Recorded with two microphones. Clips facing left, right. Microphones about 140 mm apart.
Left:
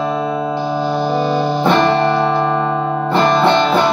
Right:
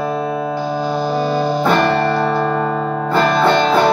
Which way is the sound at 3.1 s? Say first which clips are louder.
Left 1 dB; 25° left (ahead or behind).